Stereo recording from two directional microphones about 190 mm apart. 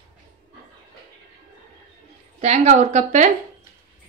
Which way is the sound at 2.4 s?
35° right (ahead or behind).